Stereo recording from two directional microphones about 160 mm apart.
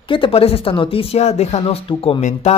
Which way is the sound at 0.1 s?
35° left (ahead or behind).